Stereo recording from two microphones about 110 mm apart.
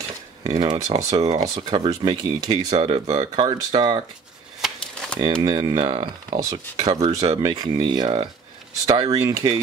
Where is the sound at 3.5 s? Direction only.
45° right (ahead or behind).